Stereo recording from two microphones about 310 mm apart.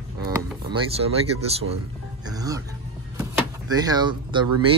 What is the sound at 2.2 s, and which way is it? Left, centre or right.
Music, centre.